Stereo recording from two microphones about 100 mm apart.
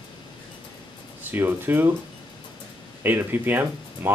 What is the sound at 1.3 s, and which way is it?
Speech, 20° right (ahead or behind).